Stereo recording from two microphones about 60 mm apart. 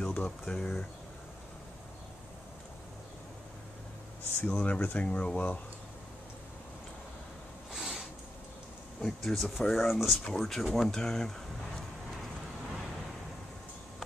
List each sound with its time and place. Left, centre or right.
0.0 s speech: left
4.5 s speech: left
7.7 s a sound: centre
9.0 s speech: centre